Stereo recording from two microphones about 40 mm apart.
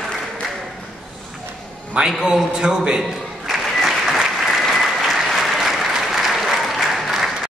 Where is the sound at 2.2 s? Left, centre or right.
Right.